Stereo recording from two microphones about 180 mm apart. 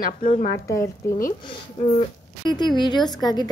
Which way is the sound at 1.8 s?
35° left (ahead or behind).